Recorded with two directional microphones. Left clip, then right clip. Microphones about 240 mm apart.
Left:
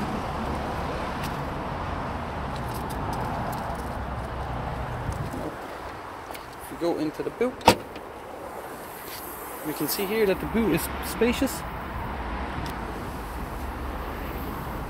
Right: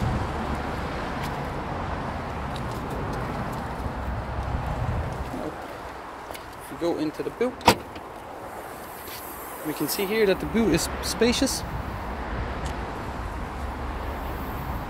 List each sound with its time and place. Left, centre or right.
6.8 s speech: centre
9.8 s speech: centre